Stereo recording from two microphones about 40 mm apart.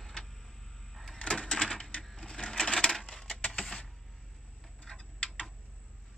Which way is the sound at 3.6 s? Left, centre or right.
Centre.